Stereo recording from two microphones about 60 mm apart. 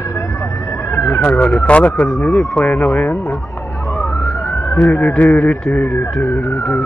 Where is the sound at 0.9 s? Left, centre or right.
Left.